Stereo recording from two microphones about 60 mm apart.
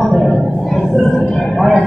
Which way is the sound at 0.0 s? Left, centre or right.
Centre.